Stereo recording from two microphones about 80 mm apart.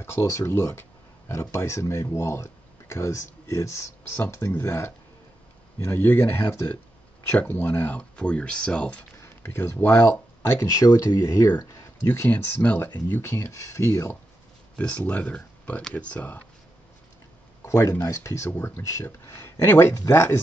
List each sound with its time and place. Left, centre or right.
0.0 s speech: left; by 9.0 s centre
9.2 s speech: left
10.7 s speech: left
12.1 s speech: left
14.8 s speech: centre
17.6 s speech: left